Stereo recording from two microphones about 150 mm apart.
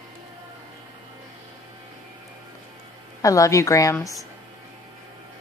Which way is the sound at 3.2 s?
20° left (ahead or behind).